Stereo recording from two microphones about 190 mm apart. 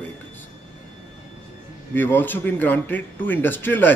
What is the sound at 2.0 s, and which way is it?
Speech, 10° left (ahead or behind).